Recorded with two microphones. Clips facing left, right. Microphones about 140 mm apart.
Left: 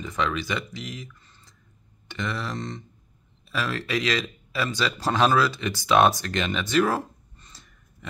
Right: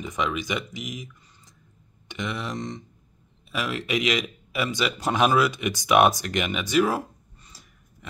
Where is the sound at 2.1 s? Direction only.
15° right (ahead or behind).